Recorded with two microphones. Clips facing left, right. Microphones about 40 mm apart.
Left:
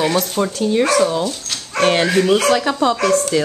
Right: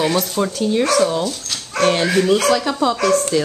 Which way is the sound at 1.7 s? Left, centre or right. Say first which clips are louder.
Left 1 dB; left.